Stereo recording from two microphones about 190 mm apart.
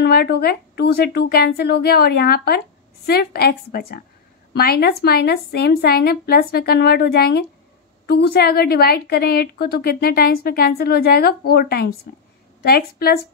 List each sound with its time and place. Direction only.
0.0 s a woman's voice: 55° left (ahead or behind)